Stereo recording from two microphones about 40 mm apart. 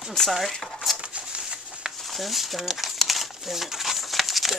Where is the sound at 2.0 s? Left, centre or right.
Centre.